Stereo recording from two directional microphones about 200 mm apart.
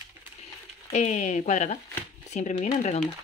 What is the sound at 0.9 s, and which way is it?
Speech, 35° left (ahead or behind).